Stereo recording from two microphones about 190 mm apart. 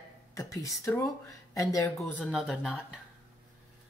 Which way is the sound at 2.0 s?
5° left (ahead or behind).